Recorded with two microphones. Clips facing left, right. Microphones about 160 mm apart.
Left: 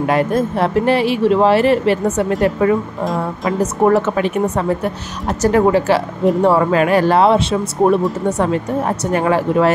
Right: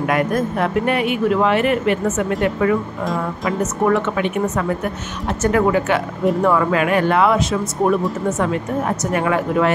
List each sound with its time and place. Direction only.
0.0 s speech: 30° left (ahead or behind)